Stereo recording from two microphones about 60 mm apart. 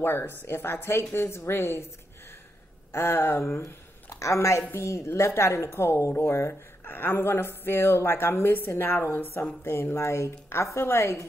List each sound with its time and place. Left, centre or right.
0.0 s a woman's voice: left
2.9 s a woman's voice: left
4.1 s a woman's voice: left